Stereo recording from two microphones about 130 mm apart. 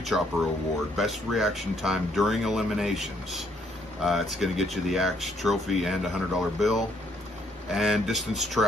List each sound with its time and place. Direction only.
0.1 s speech: centre (ahead or behind)